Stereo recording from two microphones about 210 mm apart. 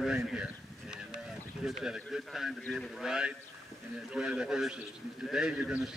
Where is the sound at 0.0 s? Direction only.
5° right (ahead or behind).